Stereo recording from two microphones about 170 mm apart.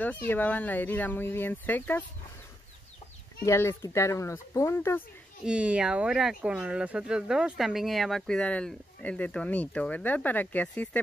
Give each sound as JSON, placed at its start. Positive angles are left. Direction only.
{"t": 0.0, "sound": "speech", "side_deg": 10}
{"t": 3.4, "sound": "speech", "side_deg": 15}
{"t": 5.4, "sound": "speech", "side_deg": -5}